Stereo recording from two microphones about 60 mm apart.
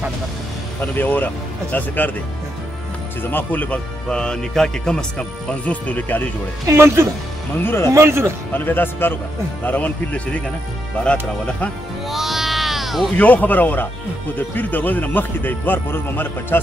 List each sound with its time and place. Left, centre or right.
0.7 s speech: left
3.2 s speech: left
4.1 s speech: centre; by 6.3 s left
6.6 s speech: right
7.6 s speech: left
7.9 s speech: right
8.5 s speech: left; by 11.7 s centre
12.1 s music: centre
13.2 s speech: left